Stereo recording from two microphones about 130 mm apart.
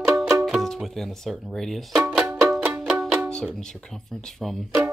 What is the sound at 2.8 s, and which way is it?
Music, centre (ahead or behind).